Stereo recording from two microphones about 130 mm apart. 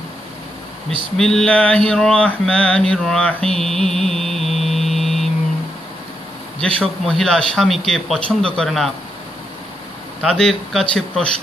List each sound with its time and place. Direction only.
1.1 s mantra: 5° left (ahead or behind)
6.6 s mantra: 5° left (ahead or behind)
10.2 s mantra: 5° left (ahead or behind)